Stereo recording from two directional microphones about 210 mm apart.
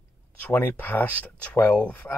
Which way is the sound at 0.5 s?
10° left (ahead or behind).